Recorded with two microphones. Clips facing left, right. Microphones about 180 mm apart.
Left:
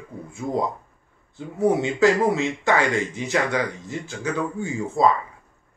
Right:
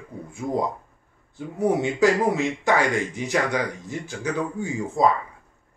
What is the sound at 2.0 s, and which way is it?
Speech, 15° right (ahead or behind).